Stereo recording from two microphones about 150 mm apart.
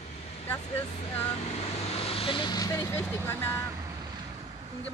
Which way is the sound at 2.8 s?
15° left (ahead or behind).